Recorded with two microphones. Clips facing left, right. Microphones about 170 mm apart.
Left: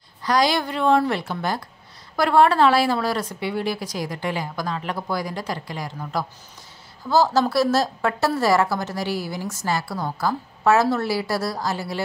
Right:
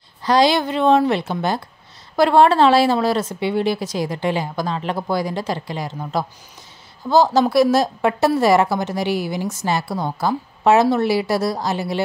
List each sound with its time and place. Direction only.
0.2 s a woman's voice: 25° right (ahead or behind)